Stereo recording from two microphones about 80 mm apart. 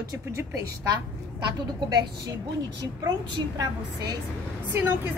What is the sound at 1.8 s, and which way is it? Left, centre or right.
Speech, right.